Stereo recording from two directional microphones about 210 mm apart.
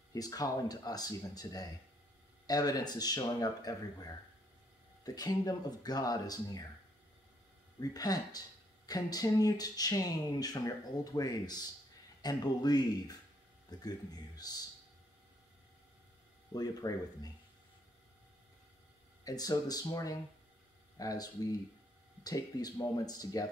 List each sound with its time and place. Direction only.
0.1 s speech: 15° left (ahead or behind)
7.9 s speech: 20° left (ahead or behind)
16.5 s speech: 20° left (ahead or behind)
19.2 s speech: 15° left (ahead or behind)